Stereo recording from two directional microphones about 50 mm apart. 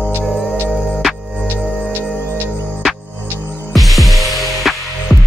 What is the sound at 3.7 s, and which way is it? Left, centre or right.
Music, centre.